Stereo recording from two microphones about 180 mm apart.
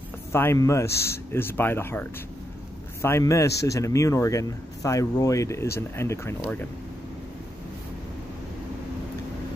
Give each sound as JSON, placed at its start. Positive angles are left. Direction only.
{"t": 0.3, "sound": "speech", "side_deg": 15}